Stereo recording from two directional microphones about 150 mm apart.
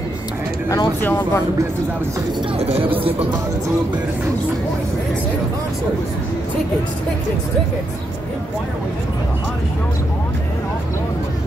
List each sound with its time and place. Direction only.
1.0 s speech: 15° left (ahead or behind)
2.6 s speech: 45° right (ahead or behind)